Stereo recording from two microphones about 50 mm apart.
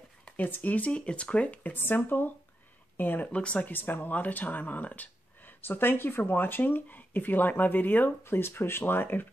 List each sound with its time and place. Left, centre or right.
0.4 s speech: left
1.7 s speech: left
3.2 s speech: left
3.7 s speech: left
5.7 s speech: left
8.2 s speech: left